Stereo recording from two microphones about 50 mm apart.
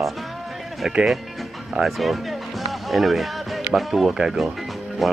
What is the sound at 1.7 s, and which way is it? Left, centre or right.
Speech, centre.